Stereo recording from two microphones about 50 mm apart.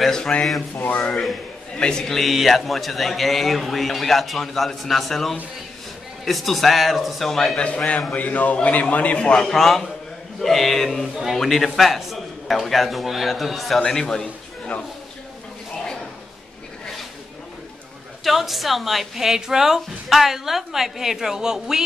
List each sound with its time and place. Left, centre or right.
0.0 s a man's voice: centre
0.6 s a man's voice: left
0.9 s a man's voice: centre
2.1 s a woman's voice: centre
7.5 s a man's voice: left; by 13.7 s centre
13.7 s a man's voice: centre
18.2 s a woman's voice: centre